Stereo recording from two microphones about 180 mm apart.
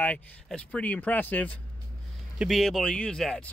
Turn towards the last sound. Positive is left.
turn(degrees=5)  # may be behind; listen again after turning